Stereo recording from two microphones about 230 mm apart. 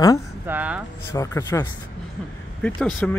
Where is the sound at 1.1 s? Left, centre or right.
Centre.